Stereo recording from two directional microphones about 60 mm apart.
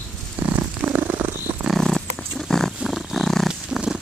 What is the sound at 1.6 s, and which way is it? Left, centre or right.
Dog, centre.